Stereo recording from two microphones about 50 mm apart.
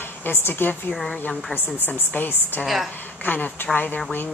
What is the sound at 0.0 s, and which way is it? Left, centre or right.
A woman's voice, left.